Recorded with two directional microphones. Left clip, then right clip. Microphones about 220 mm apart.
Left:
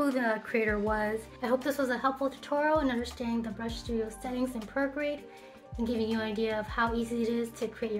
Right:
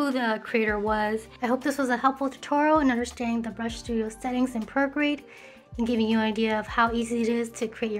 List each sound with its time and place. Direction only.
0.0 s a woman's voice: 40° right (ahead or behind)